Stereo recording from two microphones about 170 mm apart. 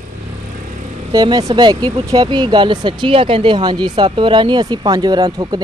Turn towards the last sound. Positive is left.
turn(degrees=-25)  # may be behind; listen again after turning